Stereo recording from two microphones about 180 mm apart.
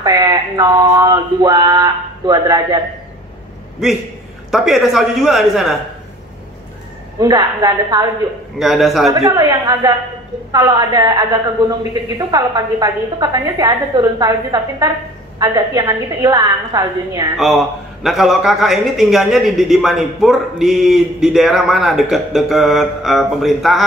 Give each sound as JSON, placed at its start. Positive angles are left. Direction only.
{"t": 0.0, "sound": "a sound", "side_deg": -20}
{"t": 3.8, "sound": "a man's voice", "side_deg": -5}
{"t": 7.2, "sound": "a woman's voice", "side_deg": -20}
{"t": 8.5, "sound": "a man's voice", "side_deg": 0}
{"t": 9.1, "sound": "a woman's voice", "side_deg": -20}
{"t": 17.4, "sound": "a man's voice", "side_deg": 0}